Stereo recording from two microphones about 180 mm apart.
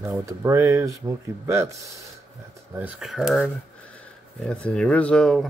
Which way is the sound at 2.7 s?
10° right (ahead or behind).